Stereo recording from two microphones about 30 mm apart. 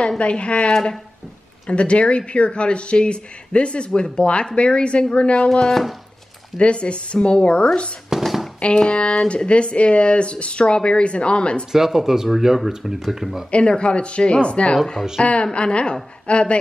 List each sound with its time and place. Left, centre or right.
0.2 s speech: left
6.6 s speech: left
8.2 s a sound: centre
8.8 s speech: left
9.5 s speech: left
11.7 s speech: centre
13.5 s speech: left
15.1 s a woman's voice: left
15.5 s speech: left